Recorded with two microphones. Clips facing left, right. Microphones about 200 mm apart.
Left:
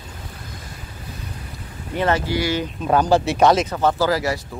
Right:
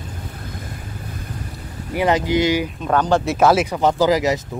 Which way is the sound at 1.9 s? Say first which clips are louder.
Right 3 dB; 15° right (ahead or behind).